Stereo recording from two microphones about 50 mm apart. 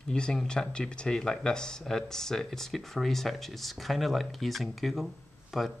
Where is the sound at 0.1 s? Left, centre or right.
Centre.